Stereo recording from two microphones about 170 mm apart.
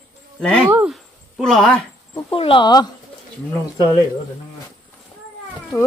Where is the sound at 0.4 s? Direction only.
5° left (ahead or behind).